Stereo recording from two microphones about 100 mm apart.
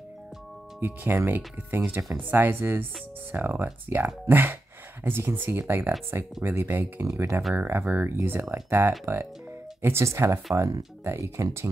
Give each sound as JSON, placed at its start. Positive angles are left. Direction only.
{"t": 0.7, "sound": "speech", "side_deg": -20}